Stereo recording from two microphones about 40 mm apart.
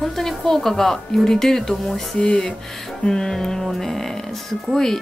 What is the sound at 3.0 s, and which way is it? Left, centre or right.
Speech, centre.